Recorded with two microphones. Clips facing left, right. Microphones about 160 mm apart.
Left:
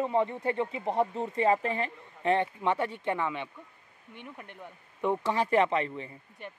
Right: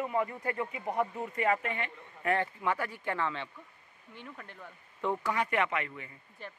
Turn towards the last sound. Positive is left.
turn(degrees=30)  # may be behind; listen again after turning